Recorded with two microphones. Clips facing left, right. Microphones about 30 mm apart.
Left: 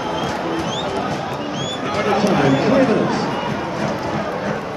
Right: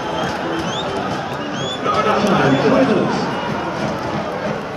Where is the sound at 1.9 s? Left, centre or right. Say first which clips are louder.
Right 4 dB; right.